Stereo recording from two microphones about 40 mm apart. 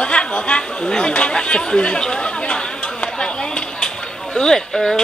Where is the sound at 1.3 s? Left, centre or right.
Left.